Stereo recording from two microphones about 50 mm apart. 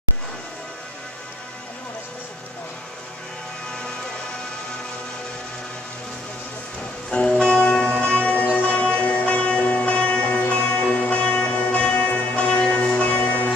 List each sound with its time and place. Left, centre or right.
7.1 s music: centre